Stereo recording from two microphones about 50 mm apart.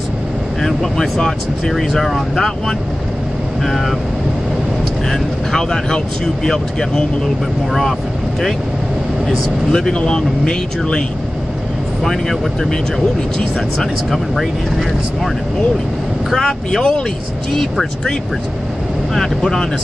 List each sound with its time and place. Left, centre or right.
0.6 s speech: centre
5.1 s speech: centre
9.7 s speech: centre
12.0 s speech: centre
13.7 s speech: centre
16.3 s speech: centre
19.1 s speech: centre